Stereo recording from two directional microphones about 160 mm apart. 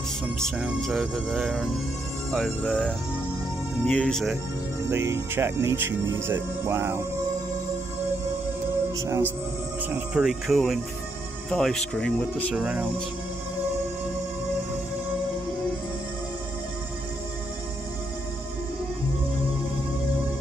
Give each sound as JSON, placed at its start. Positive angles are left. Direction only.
{"t": 0.4, "sound": "speech", "side_deg": 0}
{"t": 4.8, "sound": "speech", "side_deg": -15}
{"t": 8.9, "sound": "speech", "side_deg": -20}
{"t": 9.8, "sound": "speech", "side_deg": -10}
{"t": 12.5, "sound": "speech", "side_deg": -5}